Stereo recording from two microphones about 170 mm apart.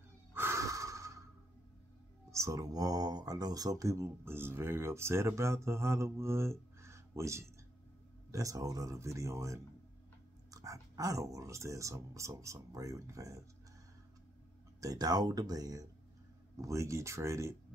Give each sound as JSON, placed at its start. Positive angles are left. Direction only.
{"t": 0.3, "sound": "a sound", "side_deg": -15}
{"t": 2.3, "sound": "speech", "side_deg": -20}
{"t": 14.8, "sound": "speech", "side_deg": -20}